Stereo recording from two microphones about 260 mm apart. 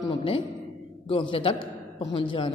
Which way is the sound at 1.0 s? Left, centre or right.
Left.